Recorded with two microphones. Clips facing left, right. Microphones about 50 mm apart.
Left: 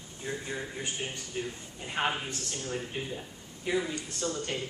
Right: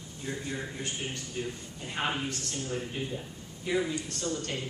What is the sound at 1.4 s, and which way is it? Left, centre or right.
Speech, left.